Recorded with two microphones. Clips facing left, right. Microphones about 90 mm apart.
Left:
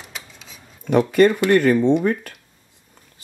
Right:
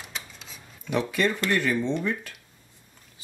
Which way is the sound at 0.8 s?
50° left (ahead or behind).